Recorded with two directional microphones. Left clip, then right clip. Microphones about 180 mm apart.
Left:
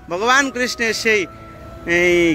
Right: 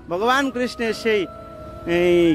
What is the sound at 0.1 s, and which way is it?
Speech, 20° right (ahead or behind).